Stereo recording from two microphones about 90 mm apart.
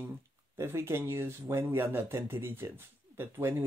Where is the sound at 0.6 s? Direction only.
30° right (ahead or behind).